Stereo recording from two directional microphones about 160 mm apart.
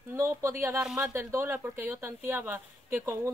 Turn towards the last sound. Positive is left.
turn(degrees=-15)  # may be behind; listen again after turning